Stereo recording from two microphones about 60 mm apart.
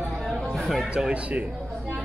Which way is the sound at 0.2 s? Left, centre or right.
Centre.